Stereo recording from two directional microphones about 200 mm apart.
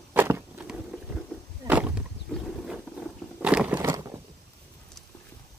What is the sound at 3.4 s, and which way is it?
Crunch, 5° right (ahead or behind).